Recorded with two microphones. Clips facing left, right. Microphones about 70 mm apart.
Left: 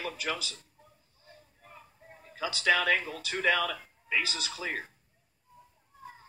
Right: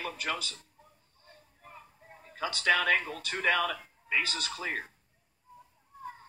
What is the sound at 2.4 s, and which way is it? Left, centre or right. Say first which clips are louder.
Speech: even; centre.